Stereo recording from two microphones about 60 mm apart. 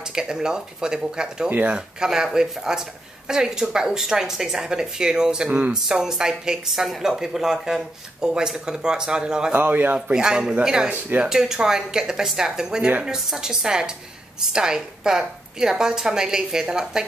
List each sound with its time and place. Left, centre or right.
0.1 s speech: centre
1.5 s a man's voice: right
2.0 s speech: centre
9.5 s a man's voice: right
9.9 s speech: centre
10.9 s a man's voice: right
11.2 s speech: centre